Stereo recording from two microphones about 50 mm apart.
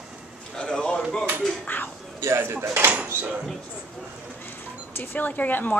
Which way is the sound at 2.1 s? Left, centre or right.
Right.